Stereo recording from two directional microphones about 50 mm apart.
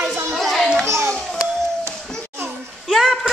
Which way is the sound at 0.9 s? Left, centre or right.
Right.